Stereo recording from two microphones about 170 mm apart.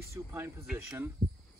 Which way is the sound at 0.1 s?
15° right (ahead or behind).